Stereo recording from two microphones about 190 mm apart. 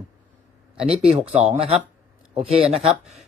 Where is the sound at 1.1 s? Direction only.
30° right (ahead or behind).